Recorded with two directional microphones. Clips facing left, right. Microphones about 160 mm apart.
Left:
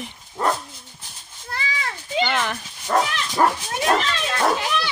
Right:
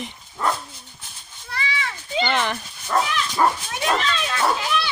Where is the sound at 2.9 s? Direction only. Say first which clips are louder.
Left 1 dB; 50° left (ahead or behind).